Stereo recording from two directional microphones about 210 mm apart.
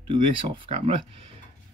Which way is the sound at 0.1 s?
25° right (ahead or behind).